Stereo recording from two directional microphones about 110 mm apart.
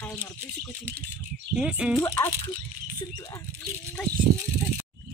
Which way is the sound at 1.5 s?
5° right (ahead or behind).